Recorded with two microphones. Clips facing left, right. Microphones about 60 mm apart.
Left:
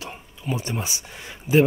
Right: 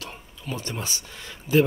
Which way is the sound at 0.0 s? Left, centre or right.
Centre.